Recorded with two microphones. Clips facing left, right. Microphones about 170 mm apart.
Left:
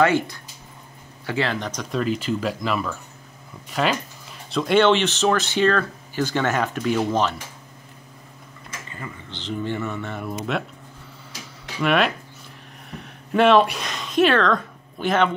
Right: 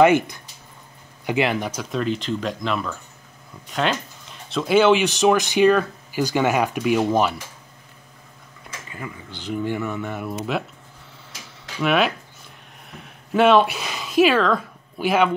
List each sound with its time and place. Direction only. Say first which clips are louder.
0.0 s speech: right 4 dB; 20° right (ahead or behind)
8.9 s speech: right 2 dB; 10° right (ahead or behind)
11.8 s speech: even; centre (ahead or behind)